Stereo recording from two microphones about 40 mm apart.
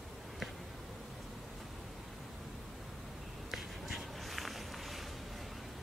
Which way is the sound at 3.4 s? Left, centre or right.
Centre.